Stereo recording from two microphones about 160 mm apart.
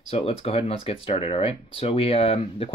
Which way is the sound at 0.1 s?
40° left (ahead or behind).